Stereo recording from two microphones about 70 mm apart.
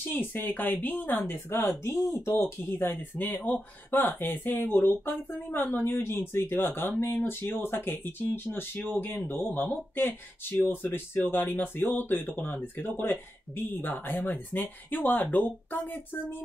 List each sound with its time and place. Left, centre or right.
0.1 s speech: left